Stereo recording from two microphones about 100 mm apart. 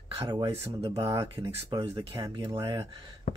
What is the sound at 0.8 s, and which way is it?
Speech, 70° right (ahead or behind).